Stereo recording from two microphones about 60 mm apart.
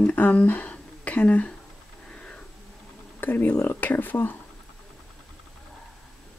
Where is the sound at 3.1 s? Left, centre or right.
Left.